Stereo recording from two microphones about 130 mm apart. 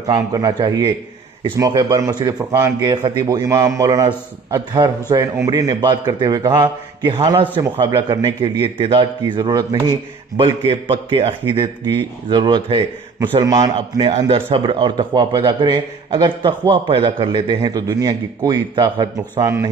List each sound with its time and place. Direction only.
0.0 s a man's voice: 30° right (ahead or behind)
5.1 s a man's voice: 25° right (ahead or behind)
14.3 s a man's voice: 40° right (ahead or behind)